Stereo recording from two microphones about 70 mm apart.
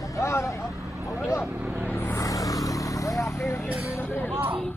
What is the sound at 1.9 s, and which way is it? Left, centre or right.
Vehicle, left.